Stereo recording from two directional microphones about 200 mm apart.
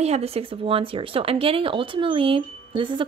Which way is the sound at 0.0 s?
30° right (ahead or behind).